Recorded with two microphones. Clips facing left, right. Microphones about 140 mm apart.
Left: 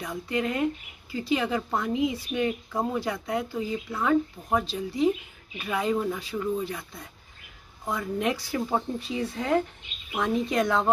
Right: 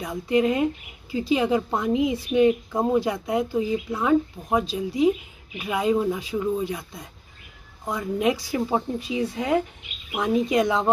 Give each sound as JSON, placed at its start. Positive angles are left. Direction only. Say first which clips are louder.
{"t": 0.0, "sound": "a woman's voice", "louder": "right 7 dB", "side_deg": -20}